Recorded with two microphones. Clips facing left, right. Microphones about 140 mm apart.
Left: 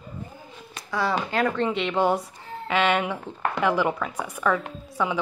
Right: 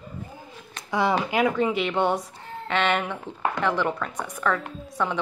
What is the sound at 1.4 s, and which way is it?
Speech, 5° right (ahead or behind).